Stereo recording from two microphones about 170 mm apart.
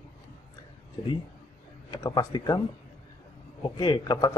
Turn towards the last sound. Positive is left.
turn(degrees=25)  # may be behind; listen again after turning